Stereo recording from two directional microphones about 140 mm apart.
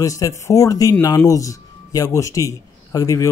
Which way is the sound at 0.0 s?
25° left (ahead or behind).